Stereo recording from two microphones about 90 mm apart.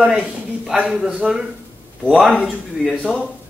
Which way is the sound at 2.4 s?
Centre (ahead or behind).